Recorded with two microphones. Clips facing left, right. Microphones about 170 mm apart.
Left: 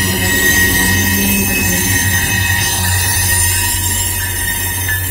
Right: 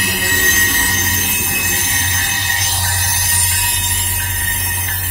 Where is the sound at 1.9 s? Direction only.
55° left (ahead or behind).